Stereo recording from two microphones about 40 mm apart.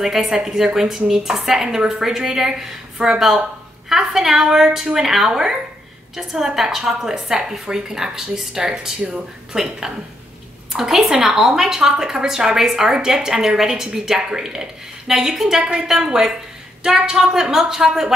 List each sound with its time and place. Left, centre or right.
0.2 s speech: right
0.7 s a woman's voice: centre
9.0 s a woman's voice: right